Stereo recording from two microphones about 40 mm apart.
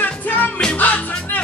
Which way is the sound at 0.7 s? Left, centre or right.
Left.